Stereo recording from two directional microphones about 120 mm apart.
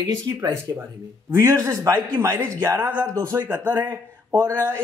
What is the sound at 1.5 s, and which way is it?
A man's voice, 30° right (ahead or behind).